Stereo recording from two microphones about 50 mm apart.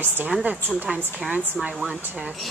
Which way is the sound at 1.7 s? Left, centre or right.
Right.